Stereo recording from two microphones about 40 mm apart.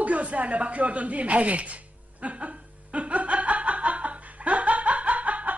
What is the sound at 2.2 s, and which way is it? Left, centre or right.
Chuckle, right.